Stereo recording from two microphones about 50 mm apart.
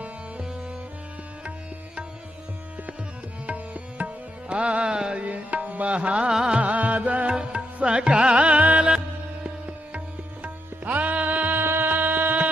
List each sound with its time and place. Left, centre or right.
3.4 s music: right
5.2 s music: right; by 6.6 s centre
6.6 s music: right
9.9 s music: right